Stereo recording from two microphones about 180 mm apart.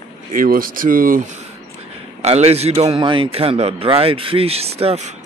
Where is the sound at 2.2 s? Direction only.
35° right (ahead or behind).